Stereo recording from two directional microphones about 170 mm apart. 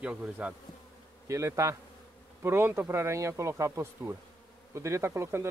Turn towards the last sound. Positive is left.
turn(degrees=-15)  # may be behind; listen again after turning